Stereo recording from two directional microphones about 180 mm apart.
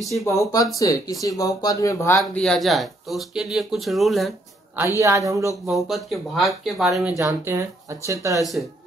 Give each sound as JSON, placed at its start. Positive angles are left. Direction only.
{"t": 0.3, "sound": "speech", "side_deg": 20}
{"t": 2.2, "sound": "speech", "side_deg": 5}
{"t": 4.9, "sound": "speech", "side_deg": -15}
{"t": 5.7, "sound": "speech", "side_deg": 0}
{"t": 7.2, "sound": "speech", "side_deg": -15}